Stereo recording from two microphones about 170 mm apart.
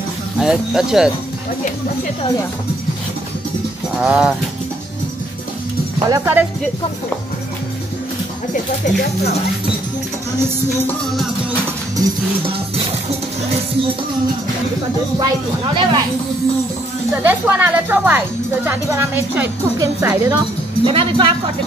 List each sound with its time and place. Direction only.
0.4 s speech: 5° right (ahead or behind)
4.0 s speech: 5° right (ahead or behind)
6.0 s speech: 15° right (ahead or behind)
15.1 s speech: 25° right (ahead or behind)
17.1 s speech: 10° right (ahead or behind)
20.8 s speech: 30° right (ahead or behind)